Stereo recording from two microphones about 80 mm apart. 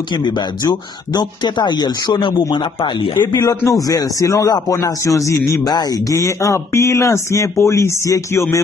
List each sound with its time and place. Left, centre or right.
0.1 s speech: left
2.5 s speech: left
3.3 s speech: left